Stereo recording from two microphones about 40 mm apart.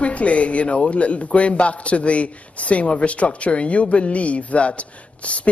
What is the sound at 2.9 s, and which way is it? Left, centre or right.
A man's voice, left.